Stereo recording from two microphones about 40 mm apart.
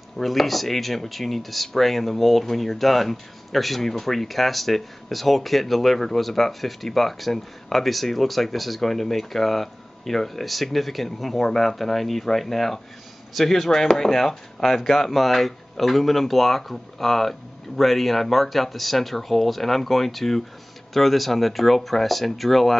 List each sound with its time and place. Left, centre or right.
0.2 s speech: centre